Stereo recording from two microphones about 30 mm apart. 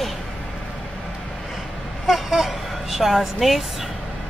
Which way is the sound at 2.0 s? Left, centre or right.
Centre.